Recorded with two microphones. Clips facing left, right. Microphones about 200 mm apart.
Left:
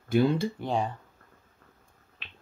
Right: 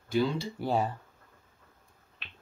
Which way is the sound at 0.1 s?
55° left (ahead or behind).